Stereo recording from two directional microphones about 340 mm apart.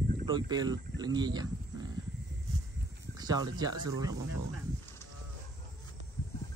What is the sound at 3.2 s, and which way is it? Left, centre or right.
Speech, centre.